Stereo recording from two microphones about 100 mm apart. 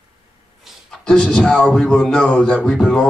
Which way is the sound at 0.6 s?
Centre (ahead or behind).